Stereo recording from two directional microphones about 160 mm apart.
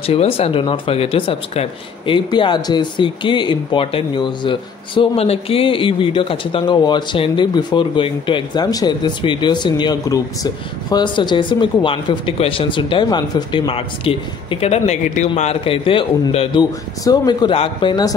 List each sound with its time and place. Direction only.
0.0 s speech: 35° left (ahead or behind)
17.0 s speech: 25° left (ahead or behind)